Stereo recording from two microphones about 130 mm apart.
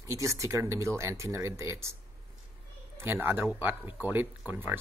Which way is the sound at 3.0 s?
15° right (ahead or behind).